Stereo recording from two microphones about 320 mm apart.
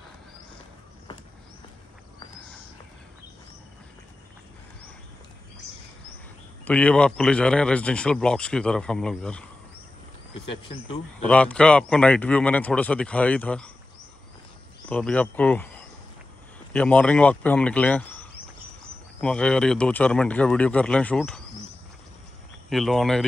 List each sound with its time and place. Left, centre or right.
6.6 s speech: centre
10.5 s speech: centre
11.2 s speech: centre
14.9 s speech: centre
19.2 s speech: centre
22.7 s speech: centre